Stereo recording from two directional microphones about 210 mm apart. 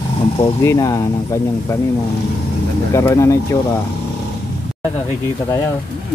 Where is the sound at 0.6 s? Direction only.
15° left (ahead or behind).